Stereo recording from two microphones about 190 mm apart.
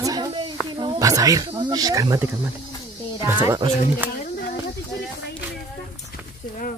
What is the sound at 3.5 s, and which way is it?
Speech, 20° right (ahead or behind).